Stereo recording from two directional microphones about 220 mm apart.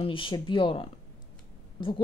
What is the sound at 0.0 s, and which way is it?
A woman's voice, 25° left (ahead or behind).